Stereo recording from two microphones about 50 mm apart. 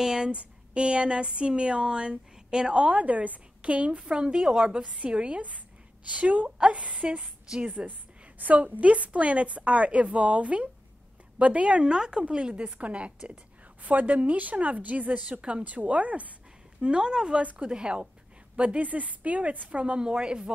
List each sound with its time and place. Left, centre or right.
0.0 s speech: centre
0.3 s speech: right
7.1 s a woman's voice: centre
7.6 s speech: right
16.8 s speech: centre